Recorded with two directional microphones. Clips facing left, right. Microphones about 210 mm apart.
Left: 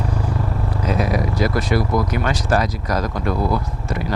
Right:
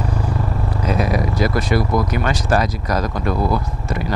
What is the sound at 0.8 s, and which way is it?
Speech, 20° right (ahead or behind).